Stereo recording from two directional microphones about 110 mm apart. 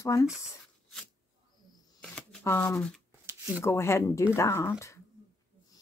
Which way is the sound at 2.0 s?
5° left (ahead or behind).